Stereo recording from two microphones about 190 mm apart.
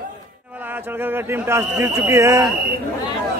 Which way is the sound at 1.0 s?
10° right (ahead or behind).